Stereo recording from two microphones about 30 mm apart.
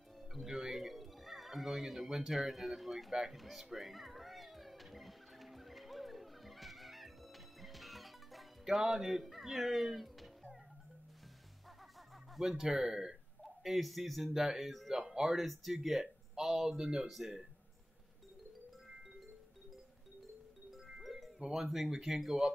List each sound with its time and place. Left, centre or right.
0.3 s music: centre
0.6 s a sound: centre
2.3 s speech: centre
3.3 s music: centre
8.6 s speech: centre
12.4 s speech: centre
12.6 s speech: centre
13.4 s speech: centre
14.3 s speech: centre
20.7 s music: centre
21.6 s speech: centre